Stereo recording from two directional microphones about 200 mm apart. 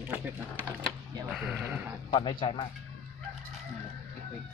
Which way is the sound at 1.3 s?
5° right (ahead or behind).